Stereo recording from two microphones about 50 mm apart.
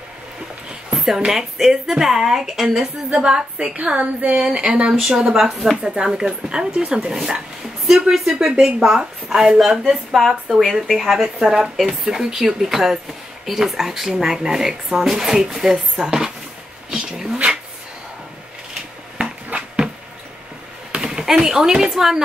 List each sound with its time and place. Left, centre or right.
0.9 s a sound: centre
1.2 s speech: centre
3.7 s a woman's voice: right
4.5 s speech: centre
5.1 s speech: centre
5.8 s speech: centre
7.0 s speech: centre
16.9 s dog: centre
19.1 s a sound: centre
20.9 s speech: centre